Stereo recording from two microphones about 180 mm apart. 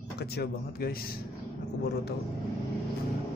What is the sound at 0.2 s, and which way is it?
Speech, 60° left (ahead or behind).